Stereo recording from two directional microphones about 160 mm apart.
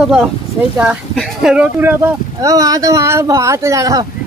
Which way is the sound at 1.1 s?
Centre (ahead or behind).